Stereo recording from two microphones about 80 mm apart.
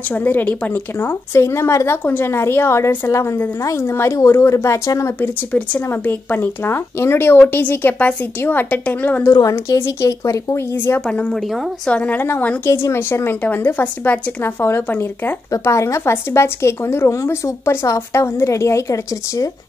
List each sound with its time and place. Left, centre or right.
0.1 s a woman's voice: left
6.0 s a woman's voice: left
9.3 s speech: left
11.3 s a woman's voice: centre
11.9 s a woman's voice: centre
15.6 s speech: left